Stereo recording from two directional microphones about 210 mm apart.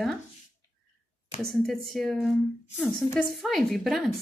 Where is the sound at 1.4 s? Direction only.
Centre (ahead or behind).